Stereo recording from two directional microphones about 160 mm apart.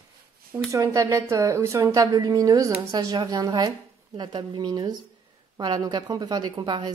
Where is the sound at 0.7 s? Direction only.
20° right (ahead or behind).